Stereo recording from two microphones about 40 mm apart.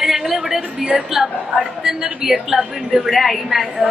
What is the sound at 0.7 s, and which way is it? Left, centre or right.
A woman's voice, centre.